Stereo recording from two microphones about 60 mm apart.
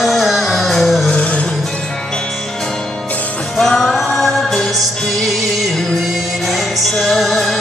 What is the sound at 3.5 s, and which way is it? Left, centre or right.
Music, centre.